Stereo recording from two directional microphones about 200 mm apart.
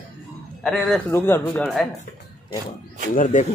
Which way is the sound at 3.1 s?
40° left (ahead or behind).